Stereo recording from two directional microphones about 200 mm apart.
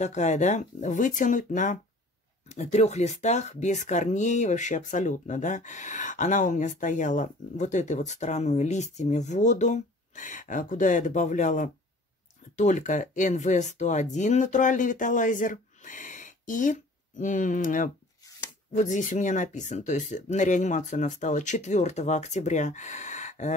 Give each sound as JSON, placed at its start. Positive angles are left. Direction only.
{"t": 0.0, "sound": "speech", "side_deg": 35}